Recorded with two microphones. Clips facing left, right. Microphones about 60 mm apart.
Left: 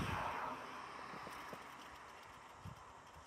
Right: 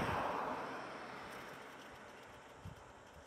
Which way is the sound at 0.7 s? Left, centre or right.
Right.